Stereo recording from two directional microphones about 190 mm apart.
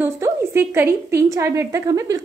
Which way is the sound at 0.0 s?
10° right (ahead or behind).